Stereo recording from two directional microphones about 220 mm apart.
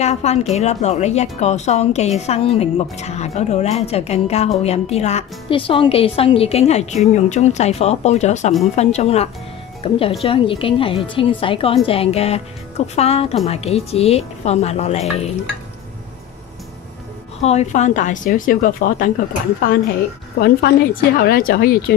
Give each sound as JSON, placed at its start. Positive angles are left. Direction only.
{"t": 0.0, "sound": "a woman's voice", "side_deg": 30}
{"t": 17.4, "sound": "a woman's voice", "side_deg": 30}